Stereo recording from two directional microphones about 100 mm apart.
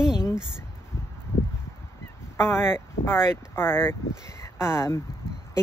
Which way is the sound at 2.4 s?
25° left (ahead or behind).